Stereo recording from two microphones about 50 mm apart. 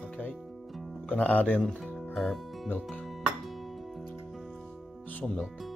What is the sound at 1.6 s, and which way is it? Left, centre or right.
Music, centre.